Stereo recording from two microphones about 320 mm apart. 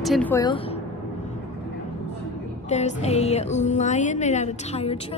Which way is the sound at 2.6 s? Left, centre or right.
Left.